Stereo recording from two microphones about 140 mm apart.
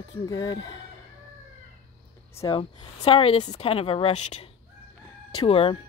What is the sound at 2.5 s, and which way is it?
A woman's voice, 40° left (ahead or behind).